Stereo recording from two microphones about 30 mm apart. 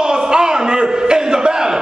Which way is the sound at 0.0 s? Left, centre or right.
Right.